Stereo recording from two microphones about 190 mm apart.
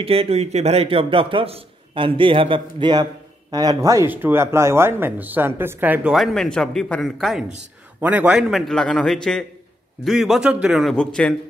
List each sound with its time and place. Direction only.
0.0 s a man's voice: 30° right (ahead or behind); by 11.3 s 5° left (ahead or behind)